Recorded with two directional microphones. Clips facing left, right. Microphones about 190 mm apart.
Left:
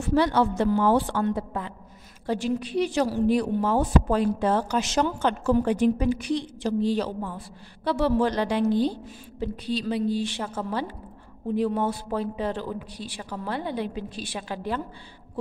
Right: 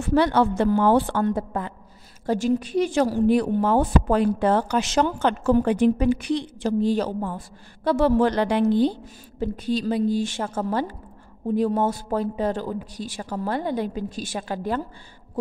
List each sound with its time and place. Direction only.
0.0 s a woman's voice: 60° right (ahead or behind)
9.4 s speech: 45° right (ahead or behind)